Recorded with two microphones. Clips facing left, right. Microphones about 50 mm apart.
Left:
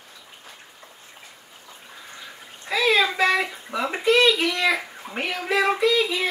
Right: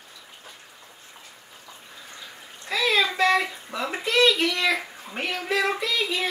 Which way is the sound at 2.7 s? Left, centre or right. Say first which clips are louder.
Left 3 dB; centre.